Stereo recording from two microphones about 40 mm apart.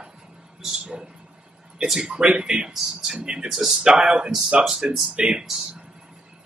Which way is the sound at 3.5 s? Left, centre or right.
Centre.